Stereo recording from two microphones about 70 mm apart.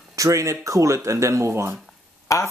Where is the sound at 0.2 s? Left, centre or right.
Right.